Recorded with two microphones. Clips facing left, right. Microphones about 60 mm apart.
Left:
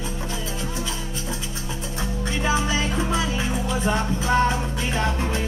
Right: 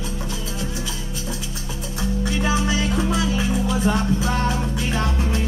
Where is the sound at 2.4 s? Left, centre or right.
Left.